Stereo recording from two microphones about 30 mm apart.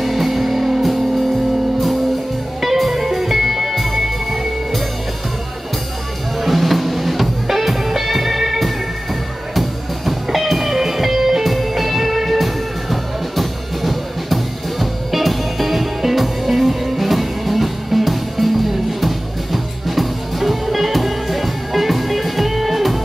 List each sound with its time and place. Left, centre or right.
0.0 s music: centre
2.6 s music: centre
6.4 s music: centre